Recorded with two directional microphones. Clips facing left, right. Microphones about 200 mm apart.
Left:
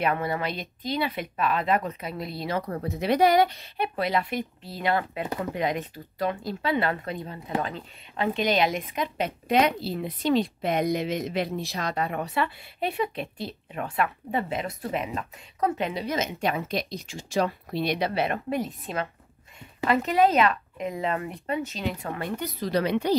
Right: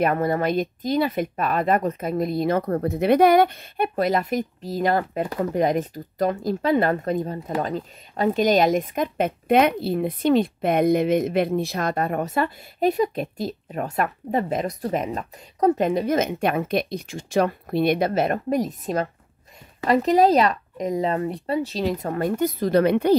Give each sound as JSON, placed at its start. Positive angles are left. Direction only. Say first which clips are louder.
{"t": 0.0, "sound": "a woman's voice", "louder": "right 6 dB", "side_deg": -45}